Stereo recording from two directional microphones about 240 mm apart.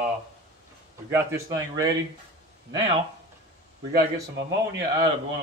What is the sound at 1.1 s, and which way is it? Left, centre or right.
Speech, centre.